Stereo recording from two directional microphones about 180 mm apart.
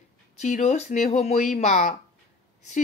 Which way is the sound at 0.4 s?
40° left (ahead or behind).